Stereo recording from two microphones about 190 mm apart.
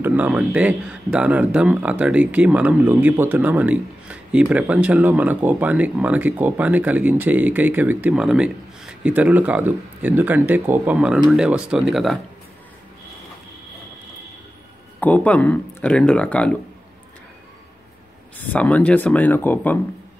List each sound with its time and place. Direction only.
0.0 s speech: 10° right (ahead or behind)
15.0 s speech: 10° left (ahead or behind)
18.5 s speech: 5° left (ahead or behind)